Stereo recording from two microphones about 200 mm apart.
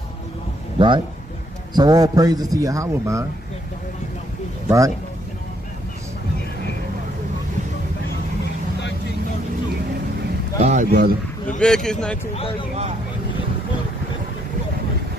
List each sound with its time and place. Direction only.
0.7 s a man's voice: 25° right (ahead or behind)
4.6 s speech: 15° right (ahead or behind)
10.6 s speech: 40° right (ahead or behind)
11.6 s speech: 5° left (ahead or behind)